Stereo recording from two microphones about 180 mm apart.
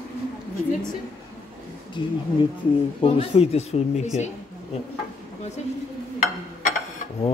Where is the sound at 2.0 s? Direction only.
25° left (ahead or behind).